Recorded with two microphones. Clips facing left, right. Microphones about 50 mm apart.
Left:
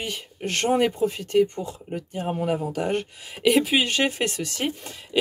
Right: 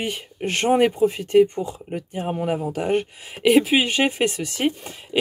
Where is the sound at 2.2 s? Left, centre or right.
Centre.